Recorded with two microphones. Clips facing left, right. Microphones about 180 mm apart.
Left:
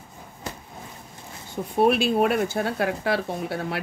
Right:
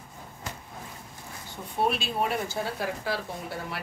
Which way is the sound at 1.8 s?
60° left (ahead or behind).